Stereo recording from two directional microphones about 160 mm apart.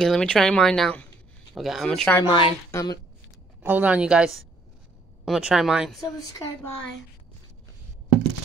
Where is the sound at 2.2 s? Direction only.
30° left (ahead or behind).